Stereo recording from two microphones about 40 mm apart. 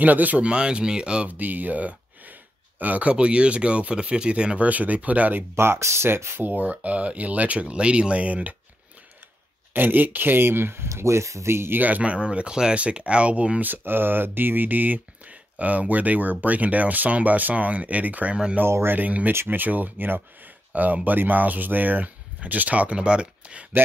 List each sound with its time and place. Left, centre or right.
0.0 s speech: right
0.4 s speech: right
1.3 s speech: right
4.6 s speech: right
5.6 s speech: right
9.8 s speech: right
12.0 s speech: right
13.6 s speech: right
18.3 s speech: right
18.7 s speech: right
18.9 s speech: right
19.3 s speech: right
19.6 s speech: right